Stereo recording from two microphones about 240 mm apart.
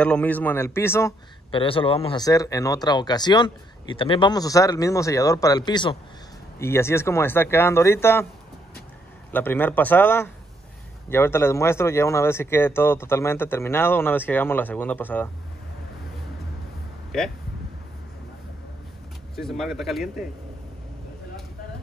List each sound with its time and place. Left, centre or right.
0.0 s speech: centre
1.5 s speech: left
9.3 s speech: centre
19.3 s speech: centre